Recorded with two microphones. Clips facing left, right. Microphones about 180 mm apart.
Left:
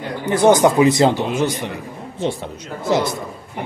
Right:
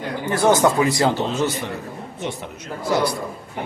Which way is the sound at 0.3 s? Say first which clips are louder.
Left 4 dB; 20° left (ahead or behind).